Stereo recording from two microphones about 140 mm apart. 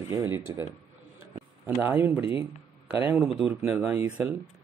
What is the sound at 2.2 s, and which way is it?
Speech, 40° left (ahead or behind).